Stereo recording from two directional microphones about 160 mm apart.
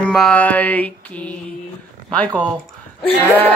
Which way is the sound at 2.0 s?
10° left (ahead or behind).